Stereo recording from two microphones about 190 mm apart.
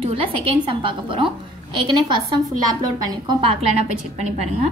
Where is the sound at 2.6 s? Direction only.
20° right (ahead or behind).